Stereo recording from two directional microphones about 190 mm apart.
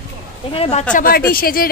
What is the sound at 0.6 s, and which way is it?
Speech, 35° left (ahead or behind).